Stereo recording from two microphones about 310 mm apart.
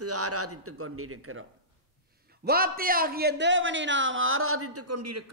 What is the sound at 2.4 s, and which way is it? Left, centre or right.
A man's voice, right.